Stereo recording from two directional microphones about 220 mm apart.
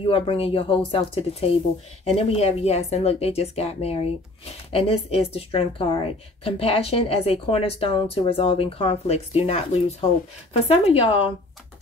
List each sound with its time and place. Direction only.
0.0 s speech: 25° left (ahead or behind)